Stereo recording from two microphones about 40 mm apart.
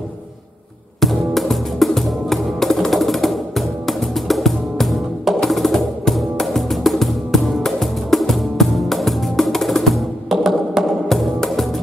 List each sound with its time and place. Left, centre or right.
1.0 s music: centre
10.3 s music: centre
11.1 s music: centre